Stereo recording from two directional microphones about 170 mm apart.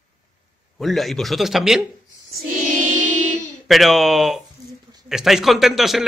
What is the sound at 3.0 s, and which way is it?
Music, 50° right (ahead or behind).